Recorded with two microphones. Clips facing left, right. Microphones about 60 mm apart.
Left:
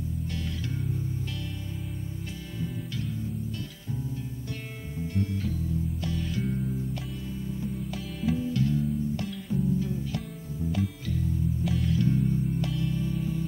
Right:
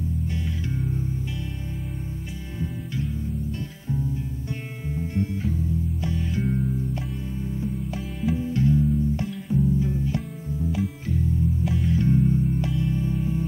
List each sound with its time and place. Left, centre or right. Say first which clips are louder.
0.3 s music: right 4 dB; right
4.9 s music: right 3 dB; right
10.6 s music: right 2 dB; centre
11.9 s music: right 5 dB; right